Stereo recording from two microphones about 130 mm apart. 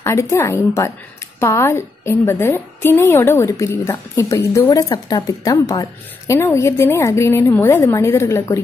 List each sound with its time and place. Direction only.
0.0 s a woman's voice: 20° left (ahead or behind)